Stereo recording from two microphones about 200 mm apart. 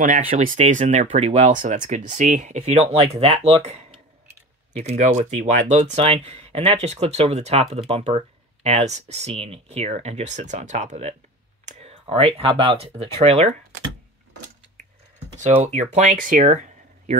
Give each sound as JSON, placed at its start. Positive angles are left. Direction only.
{"t": 0.0, "sound": "speech", "side_deg": -40}
{"t": 15.3, "sound": "speech", "side_deg": -35}